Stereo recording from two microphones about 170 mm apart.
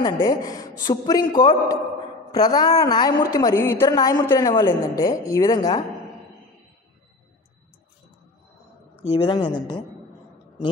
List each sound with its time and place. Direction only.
0.0 s a woman's voice: 20° left (ahead or behind)
9.1 s a woman's voice: 30° left (ahead or behind)